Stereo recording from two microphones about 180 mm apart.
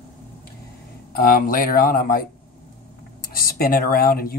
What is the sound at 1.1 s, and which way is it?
Speech, 50° left (ahead or behind).